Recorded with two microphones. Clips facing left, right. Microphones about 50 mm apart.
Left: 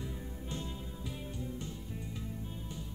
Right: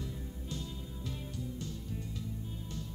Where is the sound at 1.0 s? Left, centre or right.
Centre.